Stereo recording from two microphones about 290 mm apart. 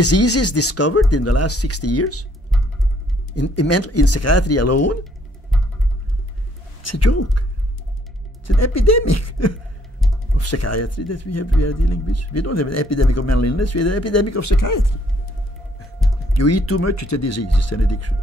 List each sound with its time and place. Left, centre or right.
0.0 s speech: left
3.5 s a man's voice: left
6.8 s a man's voice: left
8.5 s a man's voice: left
16.0 s a sound: centre
16.3 s a man's voice: left